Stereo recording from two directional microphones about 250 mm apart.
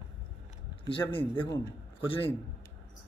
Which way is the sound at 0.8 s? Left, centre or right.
Centre.